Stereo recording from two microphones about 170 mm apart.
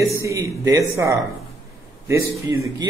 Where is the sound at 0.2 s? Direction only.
15° right (ahead or behind).